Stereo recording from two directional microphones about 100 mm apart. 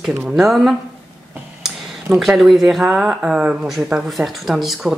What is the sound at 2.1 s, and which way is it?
Speech, 5° right (ahead or behind).